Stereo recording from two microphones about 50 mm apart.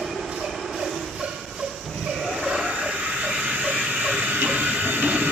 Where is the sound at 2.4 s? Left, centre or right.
Centre.